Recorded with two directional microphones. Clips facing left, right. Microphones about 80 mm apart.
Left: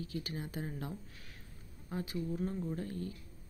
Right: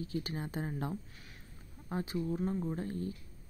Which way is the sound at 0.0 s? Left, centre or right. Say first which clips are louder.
Right 3 dB; right.